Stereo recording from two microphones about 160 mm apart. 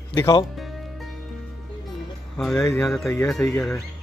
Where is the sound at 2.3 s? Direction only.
5° left (ahead or behind).